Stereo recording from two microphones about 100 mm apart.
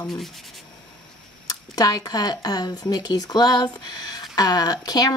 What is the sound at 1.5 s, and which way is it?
Speech, 40° left (ahead or behind).